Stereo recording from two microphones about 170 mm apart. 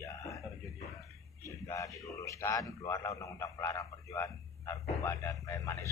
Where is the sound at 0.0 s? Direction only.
20° left (ahead or behind).